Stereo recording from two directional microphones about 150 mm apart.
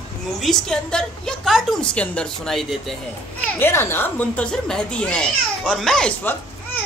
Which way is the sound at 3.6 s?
15° left (ahead or behind).